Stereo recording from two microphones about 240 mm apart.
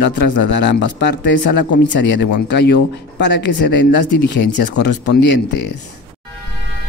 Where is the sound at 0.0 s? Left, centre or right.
Left.